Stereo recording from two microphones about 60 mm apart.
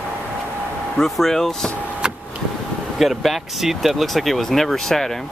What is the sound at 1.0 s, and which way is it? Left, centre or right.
Speech, centre.